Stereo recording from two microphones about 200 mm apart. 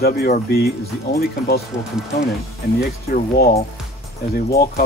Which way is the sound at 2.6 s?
55° left (ahead or behind).